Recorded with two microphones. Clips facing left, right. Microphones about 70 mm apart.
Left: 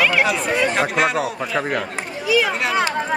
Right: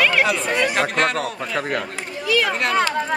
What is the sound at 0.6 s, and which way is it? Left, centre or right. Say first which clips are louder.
Speech: left 1 dB; centre.